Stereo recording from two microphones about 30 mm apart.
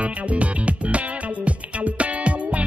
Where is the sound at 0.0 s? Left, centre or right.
Right.